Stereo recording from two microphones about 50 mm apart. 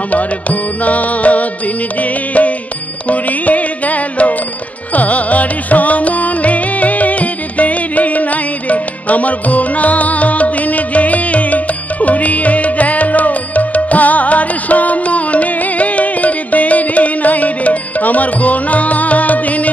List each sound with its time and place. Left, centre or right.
0.1 s music: left